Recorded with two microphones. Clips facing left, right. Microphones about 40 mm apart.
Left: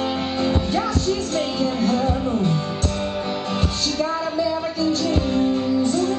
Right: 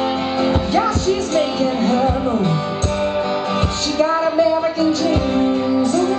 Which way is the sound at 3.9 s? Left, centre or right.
Right.